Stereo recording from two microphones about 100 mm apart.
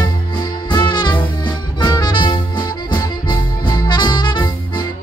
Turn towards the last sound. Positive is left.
turn(degrees=45)  # may be behind; listen again after turning